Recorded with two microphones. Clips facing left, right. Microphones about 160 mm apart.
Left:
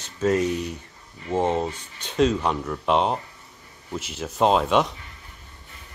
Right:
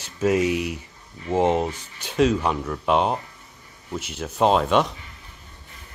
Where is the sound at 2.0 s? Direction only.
5° right (ahead or behind).